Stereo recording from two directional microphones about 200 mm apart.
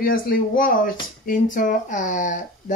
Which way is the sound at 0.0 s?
45° left (ahead or behind).